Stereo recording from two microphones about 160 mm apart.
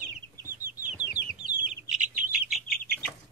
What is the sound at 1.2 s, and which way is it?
Chicken, 90° left.